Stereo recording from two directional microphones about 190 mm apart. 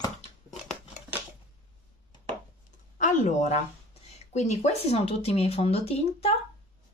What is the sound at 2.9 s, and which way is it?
Speech, 40° left (ahead or behind).